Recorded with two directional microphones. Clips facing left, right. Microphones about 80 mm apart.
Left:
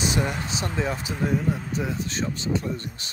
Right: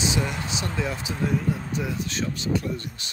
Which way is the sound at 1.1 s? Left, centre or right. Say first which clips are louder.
Even; centre.